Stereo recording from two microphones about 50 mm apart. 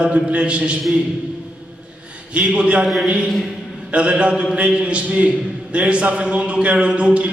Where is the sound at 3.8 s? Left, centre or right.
Right.